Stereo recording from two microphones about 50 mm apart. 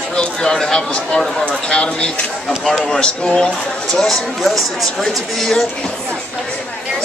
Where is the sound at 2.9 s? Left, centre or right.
Centre.